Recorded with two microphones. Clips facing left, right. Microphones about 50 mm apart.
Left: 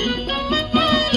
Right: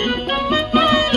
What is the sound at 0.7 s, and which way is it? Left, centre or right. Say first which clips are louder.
Music: right 3 dB; centre.